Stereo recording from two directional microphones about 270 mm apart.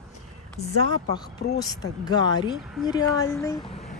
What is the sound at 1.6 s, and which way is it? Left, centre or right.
A woman's voice, centre.